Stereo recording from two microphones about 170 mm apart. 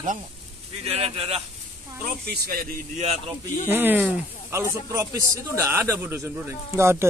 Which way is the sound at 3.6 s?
10° right (ahead or behind).